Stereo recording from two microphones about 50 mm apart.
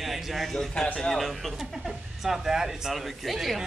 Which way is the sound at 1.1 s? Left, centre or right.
Centre.